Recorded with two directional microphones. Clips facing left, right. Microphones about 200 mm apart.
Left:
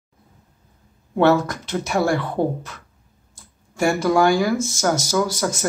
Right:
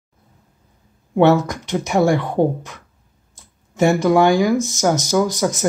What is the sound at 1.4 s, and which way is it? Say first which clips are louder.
Speech: right 3 dB; 15° right (ahead or behind).